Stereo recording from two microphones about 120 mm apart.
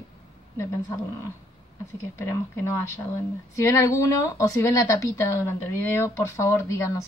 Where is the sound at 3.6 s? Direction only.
25° left (ahead or behind).